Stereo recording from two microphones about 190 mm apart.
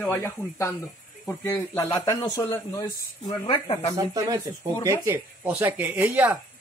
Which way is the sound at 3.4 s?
30° left (ahead or behind).